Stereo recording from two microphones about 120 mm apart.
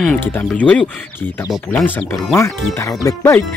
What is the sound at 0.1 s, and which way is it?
Speech, 15° left (ahead or behind).